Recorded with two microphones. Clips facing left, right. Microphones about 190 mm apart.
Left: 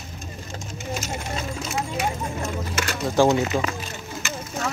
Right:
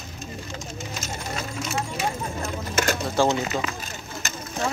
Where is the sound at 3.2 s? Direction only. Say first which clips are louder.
Left 5 dB; 15° left (ahead or behind).